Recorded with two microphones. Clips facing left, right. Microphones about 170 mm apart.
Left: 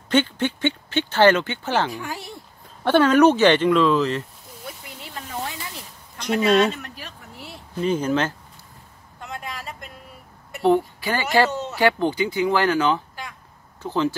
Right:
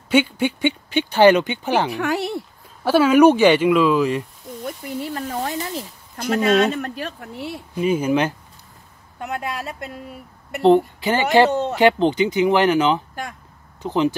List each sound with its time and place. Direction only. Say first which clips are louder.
0.1 s speech: right 2 dB; 10° right (ahead or behind)
1.9 s speech: right 9 dB; 70° right (ahead or behind)
2.8 s speech: right 2 dB; 5° right (ahead or behind)
4.6 s a sound: right 11 dB; 50° right (ahead or behind)
6.4 s speech: right 1 dB; centre (ahead or behind)
6.7 s speech: right 9 dB; 50° right (ahead or behind)
7.7 s speech: right 3 dB; 10° right (ahead or behind)
9.2 s speech: right 7 dB; 65° right (ahead or behind)
10.6 s speech: right 4 dB; 20° right (ahead or behind)
13.1 s a sound: right 6 dB; 50° right (ahead or behind)
13.8 s speech: right 3 dB; 15° right (ahead or behind)